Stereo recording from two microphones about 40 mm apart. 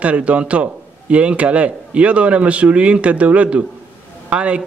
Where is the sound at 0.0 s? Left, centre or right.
Right.